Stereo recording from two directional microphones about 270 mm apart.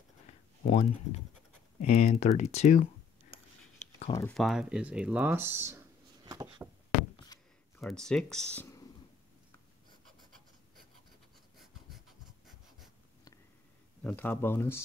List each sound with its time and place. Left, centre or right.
0.3 s a sound: left
1.8 s speech: left
4.1 s speech: centre
7.3 s a sound: centre
7.8 s speech: centre
11.5 s writing: centre
14.0 s speech: centre